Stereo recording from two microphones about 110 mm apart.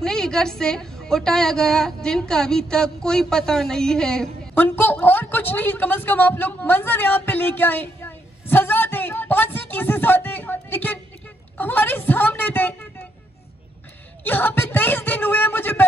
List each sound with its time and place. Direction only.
0.0 s a woman's voice: 5° left (ahead or behind)
4.6 s a woman's voice: 15° left (ahead or behind)
14.2 s speech: 15° left (ahead or behind)